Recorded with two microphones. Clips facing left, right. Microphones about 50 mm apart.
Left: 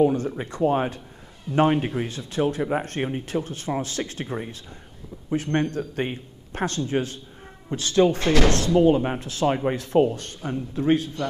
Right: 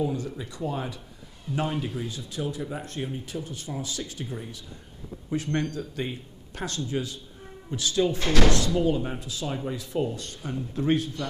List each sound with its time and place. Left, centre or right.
0.0 s a man's voice: left
8.2 s speech: left
8.5 s a man's voice: left